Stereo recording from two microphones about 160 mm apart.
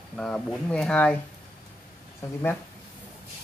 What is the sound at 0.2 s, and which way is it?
Speech, 5° left (ahead or behind).